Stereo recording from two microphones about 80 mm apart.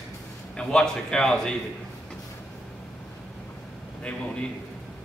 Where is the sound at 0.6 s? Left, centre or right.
Centre.